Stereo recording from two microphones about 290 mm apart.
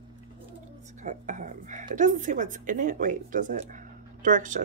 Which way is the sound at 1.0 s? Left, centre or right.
Right.